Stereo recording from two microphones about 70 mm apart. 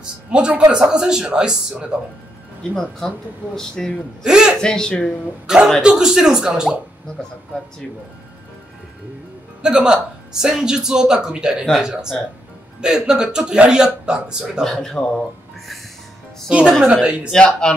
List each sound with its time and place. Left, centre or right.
0.0 s a man's voice: centre
2.7 s speech: centre
4.2 s a man's voice: centre
4.6 s speech: centre
5.8 s speech: centre
9.6 s speech: centre
14.6 s speech: centre
16.4 s speech: centre
17.3 s speech: centre